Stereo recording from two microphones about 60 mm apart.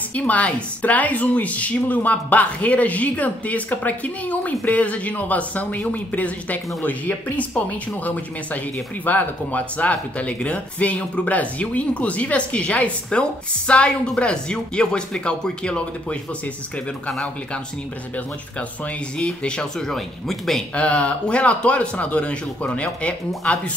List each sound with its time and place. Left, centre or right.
0.1 s speech: left
19.1 s speech: centre
19.9 s speech: centre
20.7 s speech: left